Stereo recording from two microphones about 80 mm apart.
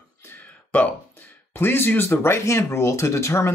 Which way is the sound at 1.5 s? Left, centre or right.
Left.